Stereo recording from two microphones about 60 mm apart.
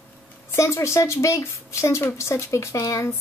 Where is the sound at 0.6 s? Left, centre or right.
Left.